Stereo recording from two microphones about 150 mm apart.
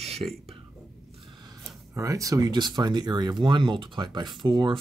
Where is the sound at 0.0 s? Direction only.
40° right (ahead or behind).